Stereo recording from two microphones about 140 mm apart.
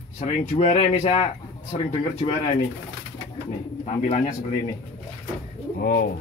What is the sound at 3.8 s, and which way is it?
Speech, 55° left (ahead or behind).